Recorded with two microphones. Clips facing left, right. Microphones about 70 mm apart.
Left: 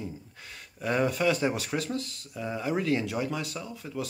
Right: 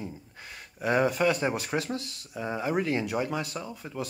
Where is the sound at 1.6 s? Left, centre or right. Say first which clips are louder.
Right 1 dB; right.